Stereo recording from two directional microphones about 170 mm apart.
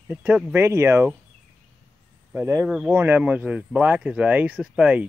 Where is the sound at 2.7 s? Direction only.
5° right (ahead or behind).